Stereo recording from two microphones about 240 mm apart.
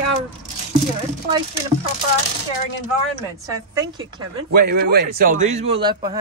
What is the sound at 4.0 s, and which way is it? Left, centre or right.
A man's voice, right.